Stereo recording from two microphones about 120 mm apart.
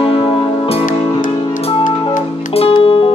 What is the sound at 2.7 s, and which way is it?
Music, 45° left (ahead or behind).